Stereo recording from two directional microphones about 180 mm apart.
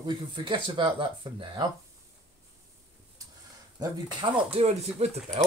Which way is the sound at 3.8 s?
30° right (ahead or behind).